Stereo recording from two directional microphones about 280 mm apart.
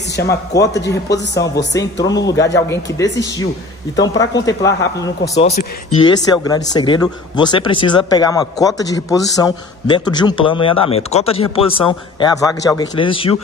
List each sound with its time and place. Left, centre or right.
0.1 s a man's voice: centre